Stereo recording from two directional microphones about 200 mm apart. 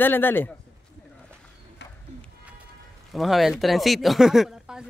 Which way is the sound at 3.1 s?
Centre (ahead or behind).